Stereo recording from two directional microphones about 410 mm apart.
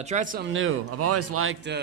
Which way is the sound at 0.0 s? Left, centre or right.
Centre.